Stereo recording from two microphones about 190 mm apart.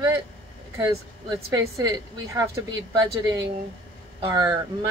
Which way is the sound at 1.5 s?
20° right (ahead or behind).